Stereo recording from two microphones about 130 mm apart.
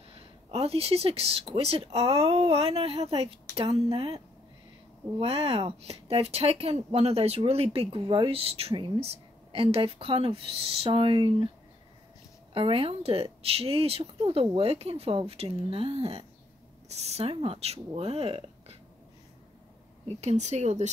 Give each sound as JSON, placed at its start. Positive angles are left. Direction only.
{"t": 0.5, "sound": "speech", "side_deg": -50}
{"t": 5.2, "sound": "speech", "side_deg": -50}
{"t": 8.0, "sound": "speech", "side_deg": -40}
{"t": 12.5, "sound": "speech", "side_deg": -45}
{"t": 20.2, "sound": "speech", "side_deg": -60}